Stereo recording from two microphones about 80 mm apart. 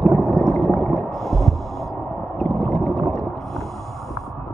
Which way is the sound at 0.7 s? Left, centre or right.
Centre.